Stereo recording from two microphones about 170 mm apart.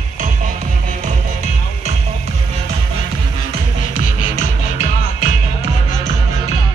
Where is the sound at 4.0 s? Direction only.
50° left (ahead or behind).